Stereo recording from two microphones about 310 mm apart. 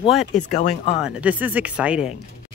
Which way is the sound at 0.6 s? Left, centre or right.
Left.